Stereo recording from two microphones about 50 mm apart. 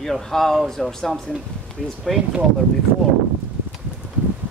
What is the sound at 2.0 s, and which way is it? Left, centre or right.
Speech, centre.